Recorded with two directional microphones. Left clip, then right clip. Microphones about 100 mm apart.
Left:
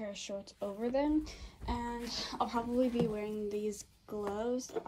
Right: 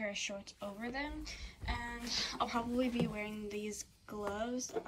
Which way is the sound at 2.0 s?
50° left (ahead or behind).